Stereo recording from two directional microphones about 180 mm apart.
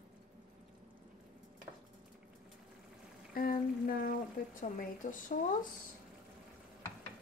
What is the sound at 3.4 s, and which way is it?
Speech, 50° left (ahead or behind).